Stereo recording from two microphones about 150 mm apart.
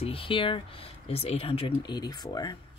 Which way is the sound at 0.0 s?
40° left (ahead or behind).